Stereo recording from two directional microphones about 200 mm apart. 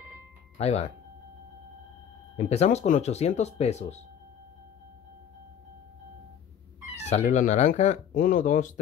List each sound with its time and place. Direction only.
0.6 s speech: 30° left (ahead or behind)
2.3 s speech: 35° left (ahead or behind)
7.1 s speech: 35° left (ahead or behind)